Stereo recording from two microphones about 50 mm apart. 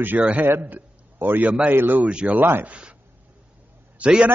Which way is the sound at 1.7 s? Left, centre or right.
Right.